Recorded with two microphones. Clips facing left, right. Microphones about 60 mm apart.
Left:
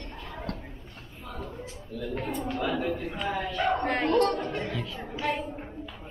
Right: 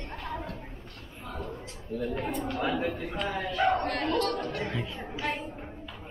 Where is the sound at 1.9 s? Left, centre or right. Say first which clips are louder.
Right 4 dB; right.